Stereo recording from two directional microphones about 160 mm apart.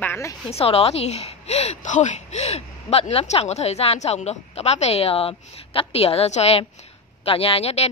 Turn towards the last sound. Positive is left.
turn(degrees=40)  # may be behind; listen again after turning